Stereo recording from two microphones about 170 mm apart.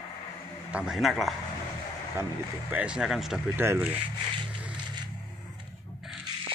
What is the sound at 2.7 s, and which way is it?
Speech, 5° right (ahead or behind).